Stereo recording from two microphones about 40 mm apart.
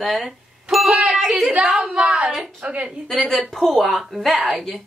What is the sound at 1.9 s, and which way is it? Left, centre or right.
Speech, right.